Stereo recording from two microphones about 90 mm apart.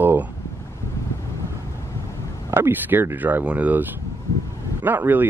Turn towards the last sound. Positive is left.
turn(degrees=-20)  # may be behind; listen again after turning